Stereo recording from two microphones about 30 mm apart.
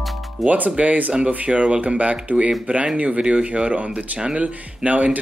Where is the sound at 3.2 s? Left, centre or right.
Right.